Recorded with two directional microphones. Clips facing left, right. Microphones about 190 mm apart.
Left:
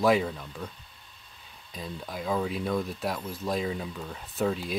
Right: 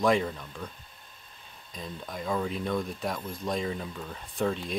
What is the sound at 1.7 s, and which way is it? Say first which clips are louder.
Speech: left 1 dB; 5° left (ahead or behind).